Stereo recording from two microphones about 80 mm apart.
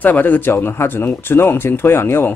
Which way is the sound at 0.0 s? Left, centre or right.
Left.